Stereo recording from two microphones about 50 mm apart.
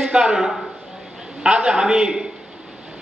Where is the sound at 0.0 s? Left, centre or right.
Centre.